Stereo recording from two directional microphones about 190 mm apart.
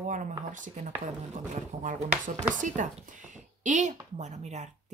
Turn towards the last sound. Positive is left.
turn(degrees=-35)  # may be behind; listen again after turning